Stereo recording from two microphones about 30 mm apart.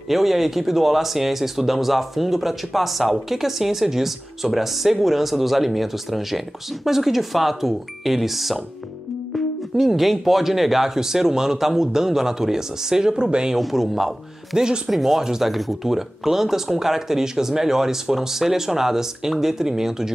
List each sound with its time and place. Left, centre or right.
0.1 s speech: centre
13.1 s speech: right
13.6 s speech: centre
15.4 s speech: centre